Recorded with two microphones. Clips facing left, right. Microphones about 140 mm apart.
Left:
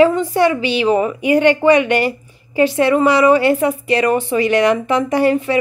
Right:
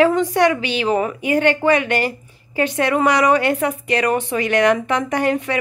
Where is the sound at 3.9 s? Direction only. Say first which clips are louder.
Left 3 dB; 55° right (ahead or behind).